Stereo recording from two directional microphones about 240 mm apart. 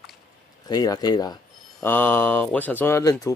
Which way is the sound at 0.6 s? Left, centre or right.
Centre.